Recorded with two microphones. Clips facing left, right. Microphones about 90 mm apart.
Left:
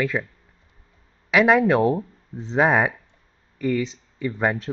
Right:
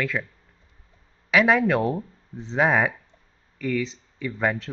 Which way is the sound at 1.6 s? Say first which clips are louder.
Left 4 dB; 20° left (ahead or behind).